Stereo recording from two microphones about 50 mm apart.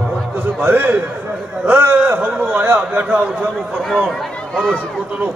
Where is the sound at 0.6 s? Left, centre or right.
Right.